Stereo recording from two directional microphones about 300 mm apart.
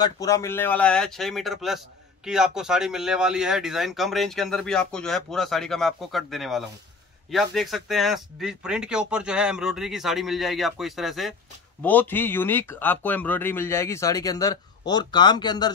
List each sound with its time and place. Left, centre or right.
0.0 s speech: centre